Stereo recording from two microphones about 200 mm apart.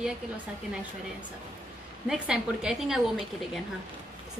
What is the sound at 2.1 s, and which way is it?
A woman's voice, 5° right (ahead or behind).